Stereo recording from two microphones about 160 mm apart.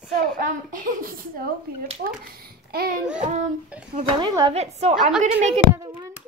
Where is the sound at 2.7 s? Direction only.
70° right (ahead or behind).